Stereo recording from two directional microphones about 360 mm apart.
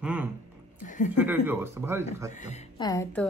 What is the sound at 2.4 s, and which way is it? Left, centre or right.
Speech, centre.